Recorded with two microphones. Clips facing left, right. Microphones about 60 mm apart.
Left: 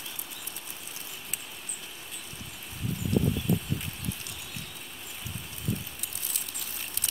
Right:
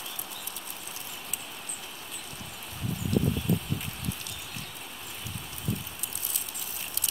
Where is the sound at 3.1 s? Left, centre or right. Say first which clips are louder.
Even; left.